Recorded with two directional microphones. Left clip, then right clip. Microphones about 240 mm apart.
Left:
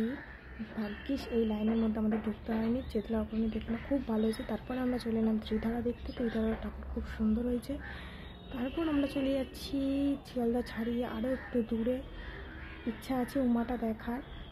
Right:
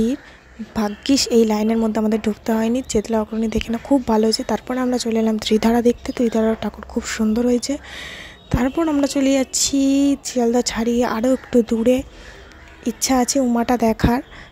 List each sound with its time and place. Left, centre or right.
0.7 s speech: right
13.0 s speech: right